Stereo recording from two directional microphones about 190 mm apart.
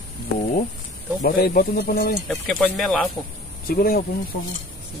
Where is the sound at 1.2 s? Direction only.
50° left (ahead or behind).